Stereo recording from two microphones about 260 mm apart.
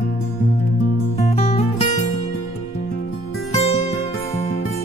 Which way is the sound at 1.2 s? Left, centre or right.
Left.